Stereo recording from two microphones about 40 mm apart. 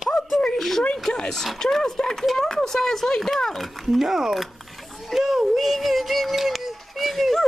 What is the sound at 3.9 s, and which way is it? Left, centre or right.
Speech, centre.